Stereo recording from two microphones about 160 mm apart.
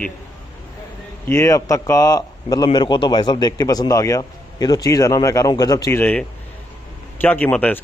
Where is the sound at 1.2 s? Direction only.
20° left (ahead or behind).